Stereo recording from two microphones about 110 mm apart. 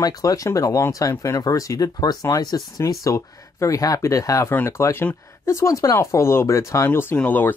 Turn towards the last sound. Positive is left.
turn(degrees=15)  # may be behind; listen again after turning